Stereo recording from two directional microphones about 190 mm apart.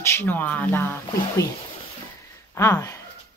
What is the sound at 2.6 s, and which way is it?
Speech, 15° left (ahead or behind).